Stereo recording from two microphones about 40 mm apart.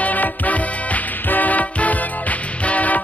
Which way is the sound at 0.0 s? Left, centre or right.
Left.